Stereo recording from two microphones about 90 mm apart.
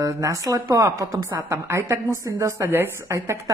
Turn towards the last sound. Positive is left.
turn(degrees=-35)  # may be behind; listen again after turning